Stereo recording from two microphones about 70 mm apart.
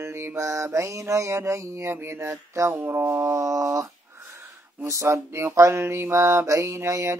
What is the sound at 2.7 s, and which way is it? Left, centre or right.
Mantra, right.